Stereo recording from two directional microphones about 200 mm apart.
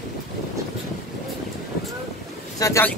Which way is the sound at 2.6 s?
10° left (ahead or behind).